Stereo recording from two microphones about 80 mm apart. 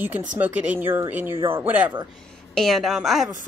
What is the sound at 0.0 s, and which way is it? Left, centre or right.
Speech, right.